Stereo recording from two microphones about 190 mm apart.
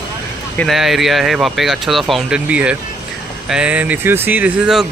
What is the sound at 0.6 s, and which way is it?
Speech, centre (ahead or behind).